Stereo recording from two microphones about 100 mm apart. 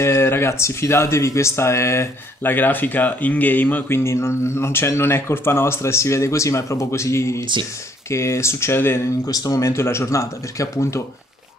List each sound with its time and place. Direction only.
0.0 s speech: 25° left (ahead or behind)
7.3 s speech: 50° right (ahead or behind)
8.1 s speech: 25° left (ahead or behind)
9.2 s speech: 40° left (ahead or behind)